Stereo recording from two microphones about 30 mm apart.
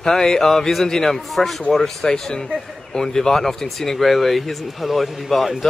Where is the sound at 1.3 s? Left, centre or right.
Centre.